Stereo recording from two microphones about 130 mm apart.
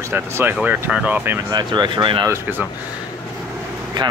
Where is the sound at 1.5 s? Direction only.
35° right (ahead or behind).